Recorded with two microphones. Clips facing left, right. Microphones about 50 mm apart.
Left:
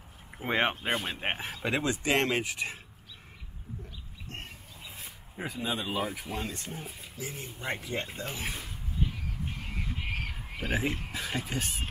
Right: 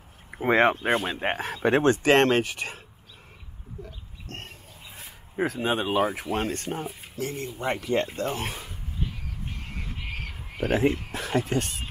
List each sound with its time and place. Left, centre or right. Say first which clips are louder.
0.5 s speech: right 7 dB; right
1.3 s speech: right 10 dB; right
5.4 s speech: right 8 dB; right
8.3 s speech: right 6 dB; right
10.6 s speech: right 8 dB; right